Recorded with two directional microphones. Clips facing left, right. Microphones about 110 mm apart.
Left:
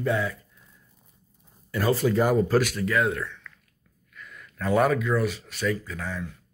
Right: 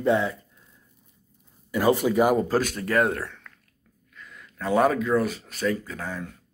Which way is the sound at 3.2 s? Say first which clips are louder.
Even; 35° right (ahead or behind).